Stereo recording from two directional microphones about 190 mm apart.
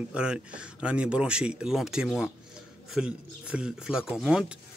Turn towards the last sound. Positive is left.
turn(degrees=-5)  # may be behind; listen again after turning